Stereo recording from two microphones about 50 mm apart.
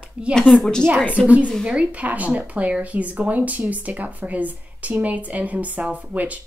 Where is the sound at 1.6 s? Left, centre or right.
Right.